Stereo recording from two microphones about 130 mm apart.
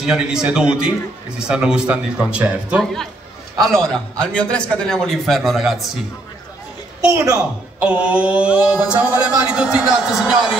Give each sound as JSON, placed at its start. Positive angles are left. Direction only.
{"t": 0.0, "sound": "a man's voice", "side_deg": -5}
{"t": 2.8, "sound": "a man's voice", "side_deg": 5}
{"t": 7.1, "sound": "a woman's voice", "side_deg": -25}
{"t": 7.3, "sound": "a man's voice", "side_deg": -10}